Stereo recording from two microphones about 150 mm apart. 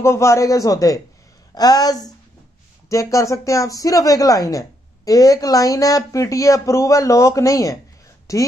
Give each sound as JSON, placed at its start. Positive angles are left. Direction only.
{"t": 0.0, "sound": "speech", "side_deg": 20}